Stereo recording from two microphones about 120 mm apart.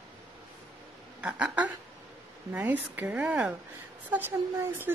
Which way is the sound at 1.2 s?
15° right (ahead or behind).